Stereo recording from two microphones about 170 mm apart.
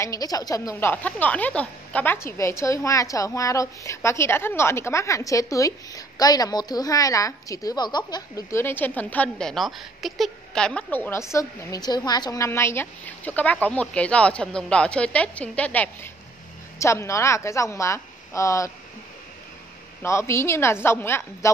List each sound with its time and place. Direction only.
0.0 s speech: 20° left (ahead or behind)
20.0 s speech: 15° left (ahead or behind)